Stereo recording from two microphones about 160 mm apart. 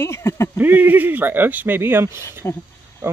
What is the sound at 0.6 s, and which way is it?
Speech, 10° right (ahead or behind).